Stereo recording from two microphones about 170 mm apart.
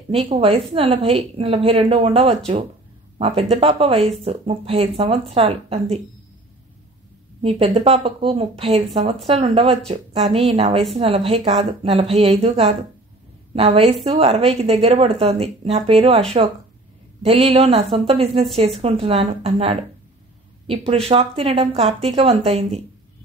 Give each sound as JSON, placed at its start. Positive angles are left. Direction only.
{"t": 0.1, "sound": "speech", "side_deg": -35}
{"t": 7.4, "sound": "a woman's voice", "side_deg": -35}
{"t": 17.2, "sound": "speech", "side_deg": -40}